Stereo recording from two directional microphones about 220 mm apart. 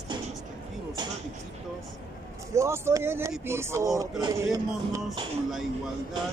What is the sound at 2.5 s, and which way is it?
Speech, 10° right (ahead or behind).